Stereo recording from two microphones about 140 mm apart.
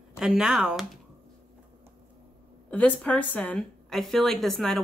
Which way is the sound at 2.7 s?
10° left (ahead or behind).